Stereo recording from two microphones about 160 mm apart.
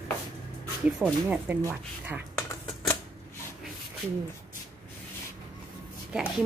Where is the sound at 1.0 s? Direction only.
15° right (ahead or behind).